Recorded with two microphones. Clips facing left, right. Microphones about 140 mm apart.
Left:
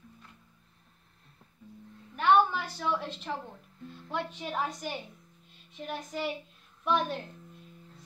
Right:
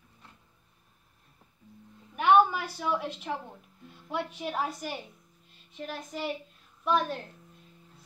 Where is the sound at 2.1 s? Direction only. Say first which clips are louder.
Right 2 dB; 10° right (ahead or behind).